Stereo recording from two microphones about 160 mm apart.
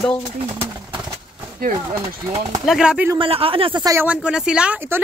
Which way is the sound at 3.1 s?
35° right (ahead or behind).